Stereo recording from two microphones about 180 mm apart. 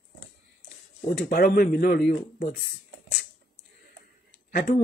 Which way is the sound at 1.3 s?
55° left (ahead or behind).